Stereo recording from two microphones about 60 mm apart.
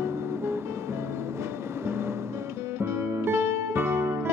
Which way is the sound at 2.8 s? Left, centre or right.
Right.